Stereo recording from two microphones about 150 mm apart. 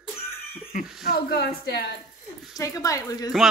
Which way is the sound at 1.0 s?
85° left.